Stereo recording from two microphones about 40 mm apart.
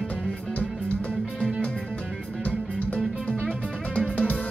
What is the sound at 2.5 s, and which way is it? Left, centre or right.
Music, left.